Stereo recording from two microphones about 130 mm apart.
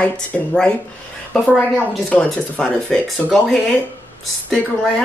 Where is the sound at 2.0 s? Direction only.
5° left (ahead or behind).